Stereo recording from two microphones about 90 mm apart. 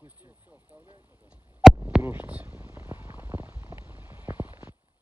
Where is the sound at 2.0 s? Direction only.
20° right (ahead or behind).